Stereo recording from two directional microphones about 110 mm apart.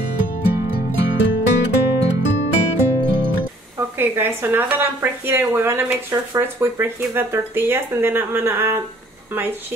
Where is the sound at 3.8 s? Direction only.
20° right (ahead or behind).